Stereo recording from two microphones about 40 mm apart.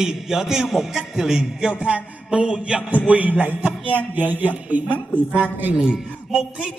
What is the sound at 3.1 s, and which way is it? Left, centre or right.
Speech, right.